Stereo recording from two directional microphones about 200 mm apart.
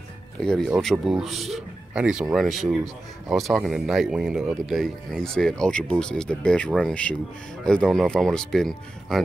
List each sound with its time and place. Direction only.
0.4 s speech: 5° left (ahead or behind)